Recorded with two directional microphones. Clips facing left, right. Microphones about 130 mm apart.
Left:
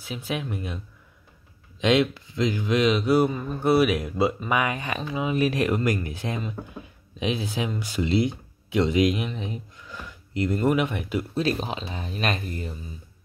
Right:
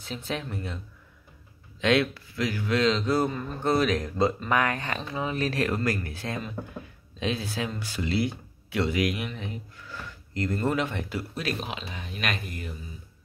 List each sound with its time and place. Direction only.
0.0 s speech: 10° left (ahead or behind)
1.8 s speech: 20° left (ahead or behind)
11.3 s speech: 30° left (ahead or behind)